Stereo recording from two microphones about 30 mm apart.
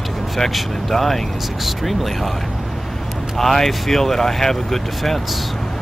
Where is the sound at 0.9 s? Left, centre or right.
Centre.